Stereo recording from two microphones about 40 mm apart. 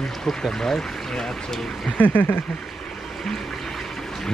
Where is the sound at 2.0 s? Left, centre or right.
Left.